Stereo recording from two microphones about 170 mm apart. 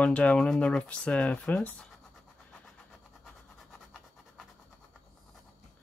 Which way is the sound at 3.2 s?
Centre (ahead or behind).